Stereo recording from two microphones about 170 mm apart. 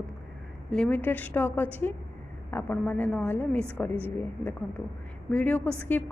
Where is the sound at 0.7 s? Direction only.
5° left (ahead or behind).